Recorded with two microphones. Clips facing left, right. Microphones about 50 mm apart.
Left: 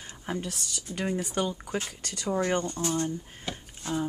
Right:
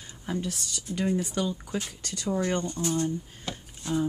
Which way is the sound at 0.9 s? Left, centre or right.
Centre.